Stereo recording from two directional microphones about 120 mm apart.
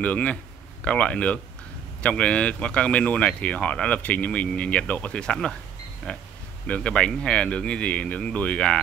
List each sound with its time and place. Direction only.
0.0 s speech: 10° left (ahead or behind)